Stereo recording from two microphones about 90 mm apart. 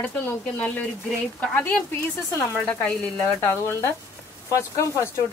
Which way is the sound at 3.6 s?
30° left (ahead or behind).